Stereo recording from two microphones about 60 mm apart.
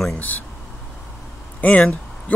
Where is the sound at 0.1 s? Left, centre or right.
Left.